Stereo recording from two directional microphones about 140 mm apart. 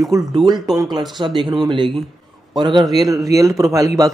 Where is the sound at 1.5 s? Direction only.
35° right (ahead or behind).